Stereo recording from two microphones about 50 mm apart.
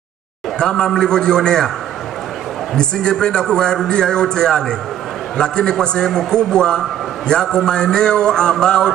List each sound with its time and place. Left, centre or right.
0.6 s a man's voice: centre
2.7 s a man's voice: centre